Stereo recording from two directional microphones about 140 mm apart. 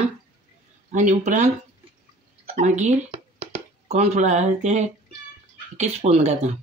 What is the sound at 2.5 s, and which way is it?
Speech, 55° right (ahead or behind).